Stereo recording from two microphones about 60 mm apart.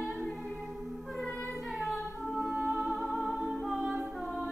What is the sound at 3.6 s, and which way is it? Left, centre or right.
Music, centre.